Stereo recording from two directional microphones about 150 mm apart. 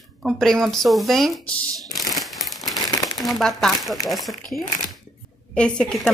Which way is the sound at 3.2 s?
Centre (ahead or behind).